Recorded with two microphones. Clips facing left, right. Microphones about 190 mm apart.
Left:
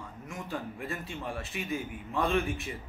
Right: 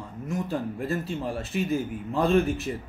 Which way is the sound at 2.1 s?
25° right (ahead or behind).